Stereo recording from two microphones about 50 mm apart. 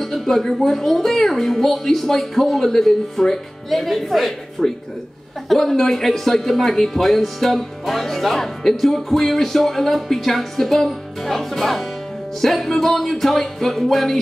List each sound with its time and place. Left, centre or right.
0.0 s speech: centre